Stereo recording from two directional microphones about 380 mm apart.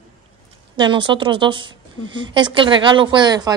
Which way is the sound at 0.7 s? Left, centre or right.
Centre.